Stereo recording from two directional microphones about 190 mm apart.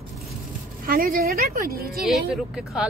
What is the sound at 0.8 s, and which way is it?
A woman's voice, 50° right (ahead or behind).